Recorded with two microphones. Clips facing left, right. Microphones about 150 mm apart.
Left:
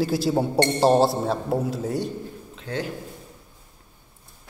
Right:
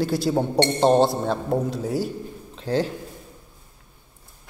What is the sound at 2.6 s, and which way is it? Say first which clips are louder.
Speech: right 7 dB; 35° right (ahead or behind).